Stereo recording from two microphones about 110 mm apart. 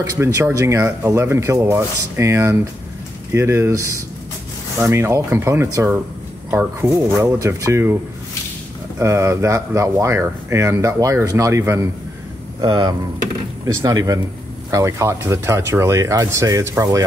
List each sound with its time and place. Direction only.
0.2 s speech: 25° right (ahead or behind)
12.5 s speech: 40° right (ahead or behind)